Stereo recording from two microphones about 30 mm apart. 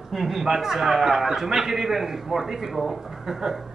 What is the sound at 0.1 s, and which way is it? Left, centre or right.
A man's voice, centre.